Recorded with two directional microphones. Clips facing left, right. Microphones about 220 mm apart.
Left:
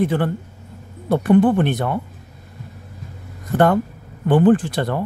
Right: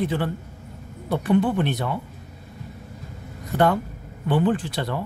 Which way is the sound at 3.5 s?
50° left (ahead or behind).